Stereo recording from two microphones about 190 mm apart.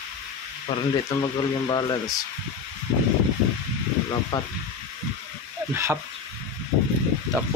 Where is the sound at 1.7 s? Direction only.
20° left (ahead or behind).